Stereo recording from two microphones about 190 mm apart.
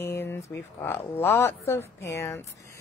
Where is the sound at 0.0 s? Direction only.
10° left (ahead or behind).